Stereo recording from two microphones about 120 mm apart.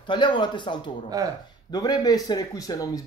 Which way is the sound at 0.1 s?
40° left (ahead or behind).